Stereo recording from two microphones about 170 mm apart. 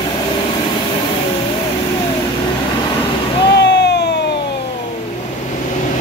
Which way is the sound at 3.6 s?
80° left.